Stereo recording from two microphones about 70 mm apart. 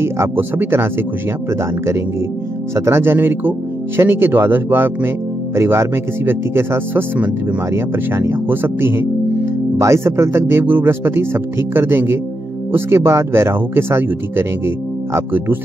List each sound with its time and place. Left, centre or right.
0.0 s speech: right
2.7 s speech: right